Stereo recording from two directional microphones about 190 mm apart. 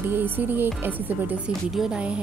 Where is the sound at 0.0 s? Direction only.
10° right (ahead or behind).